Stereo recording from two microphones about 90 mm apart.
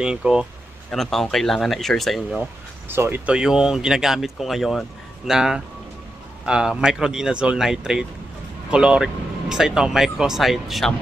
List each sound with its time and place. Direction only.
0.0 s speech: 10° right (ahead or behind)
0.9 s speech: 5° left (ahead or behind)
2.9 s speech: 25° right (ahead or behind)
3.3 s speech: 10° right (ahead or behind)